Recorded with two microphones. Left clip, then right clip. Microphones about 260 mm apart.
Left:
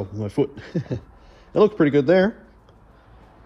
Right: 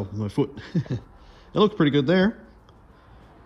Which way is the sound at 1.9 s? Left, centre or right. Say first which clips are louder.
Left 5 dB; centre.